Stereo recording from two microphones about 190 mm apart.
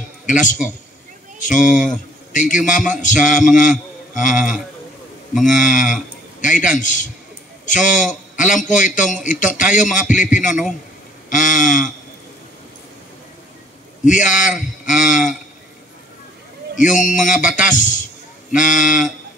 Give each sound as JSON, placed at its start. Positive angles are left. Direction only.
{"t": 0.3, "sound": "a man's voice", "side_deg": 40}
{"t": 14.0, "sound": "a man's voice", "side_deg": 40}
{"t": 16.7, "sound": "a man's voice", "side_deg": 40}